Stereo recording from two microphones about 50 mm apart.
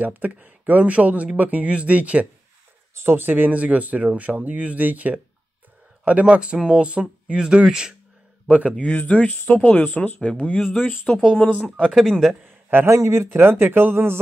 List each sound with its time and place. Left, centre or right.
0.0 s speech: right
2.9 s a sound: right
3.2 s speech: right
8.7 s speech: left
10.2 s speech: left
11.9 s speech: centre
12.8 s speech: right